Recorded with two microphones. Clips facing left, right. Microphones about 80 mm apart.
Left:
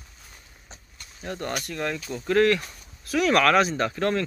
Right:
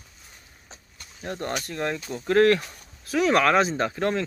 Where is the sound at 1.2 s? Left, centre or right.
Right.